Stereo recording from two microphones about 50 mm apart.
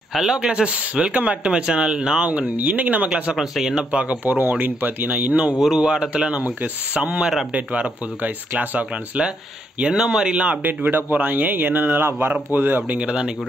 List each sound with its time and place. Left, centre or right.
0.1 s speech: centre
0.7 s speech: right
3.3 s speech: centre
3.9 s speech: right
4.2 s speech: right
5.8 s speech: centre
9.8 s speech: centre
10.6 s speech: right
12.9 s speech: right